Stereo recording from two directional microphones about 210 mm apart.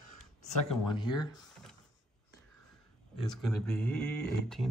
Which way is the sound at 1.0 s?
20° left (ahead or behind).